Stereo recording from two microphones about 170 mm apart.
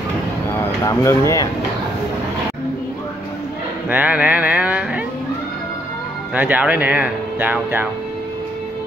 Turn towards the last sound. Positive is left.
turn(degrees=-10)  # may be behind; listen again after turning